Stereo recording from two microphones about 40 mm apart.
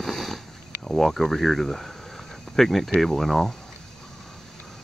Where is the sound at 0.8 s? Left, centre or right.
Centre.